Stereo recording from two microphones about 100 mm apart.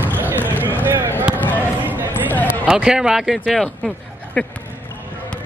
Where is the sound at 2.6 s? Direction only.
5° right (ahead or behind).